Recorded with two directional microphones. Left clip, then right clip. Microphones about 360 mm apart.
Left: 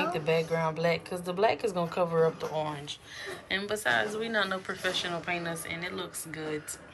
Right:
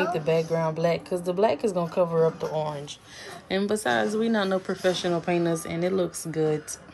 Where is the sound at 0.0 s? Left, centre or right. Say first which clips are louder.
Right 4 dB; centre.